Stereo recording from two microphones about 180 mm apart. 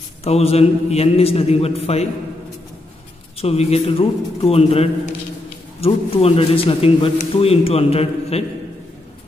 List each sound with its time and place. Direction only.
0.2 s a man's voice: 35° left (ahead or behind)
3.3 s a man's voice: 35° left (ahead or behind)